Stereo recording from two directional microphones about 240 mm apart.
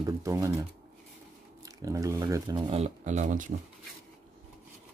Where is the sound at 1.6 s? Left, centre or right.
Centre; by 3.5 s right.